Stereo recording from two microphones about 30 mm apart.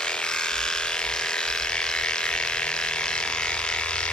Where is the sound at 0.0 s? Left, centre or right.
Left.